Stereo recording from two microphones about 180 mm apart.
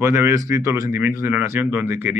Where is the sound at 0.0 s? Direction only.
15° right (ahead or behind).